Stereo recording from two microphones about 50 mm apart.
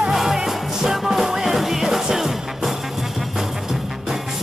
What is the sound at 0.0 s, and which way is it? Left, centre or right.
Music, centre.